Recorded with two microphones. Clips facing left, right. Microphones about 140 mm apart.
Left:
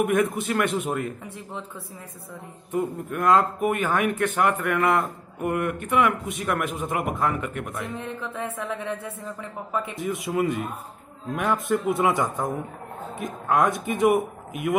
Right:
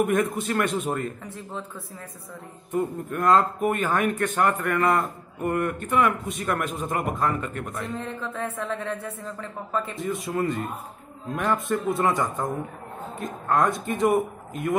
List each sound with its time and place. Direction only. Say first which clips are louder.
0.0 s speech: left 1 dB; 5° left (ahead or behind)
2.7 s a man's voice: even; 10° left (ahead or behind)